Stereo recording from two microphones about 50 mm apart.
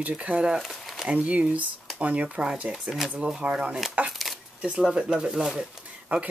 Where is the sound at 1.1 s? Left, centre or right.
Right.